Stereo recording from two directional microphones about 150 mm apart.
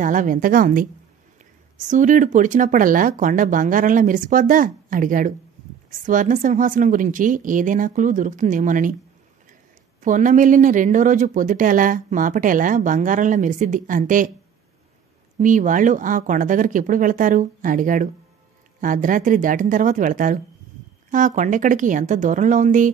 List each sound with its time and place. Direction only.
0.0 s speech: 60° right (ahead or behind)
1.9 s speech: 55° right (ahead or behind)
10.0 s speech: 60° right (ahead or behind)
15.4 s speech: 60° right (ahead or behind)